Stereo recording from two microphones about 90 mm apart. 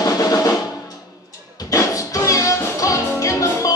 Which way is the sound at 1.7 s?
35° left (ahead or behind).